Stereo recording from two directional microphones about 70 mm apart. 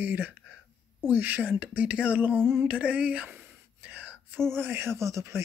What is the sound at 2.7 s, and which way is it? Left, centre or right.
Whispering, centre.